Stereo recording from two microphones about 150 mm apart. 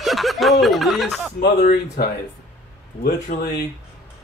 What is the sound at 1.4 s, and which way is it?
Speech, 90° left.